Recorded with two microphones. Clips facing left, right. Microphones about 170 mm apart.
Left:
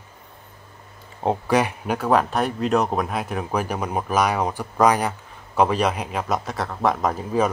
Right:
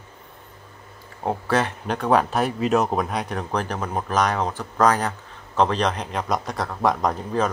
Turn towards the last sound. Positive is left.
turn(degrees=5)  # may be behind; listen again after turning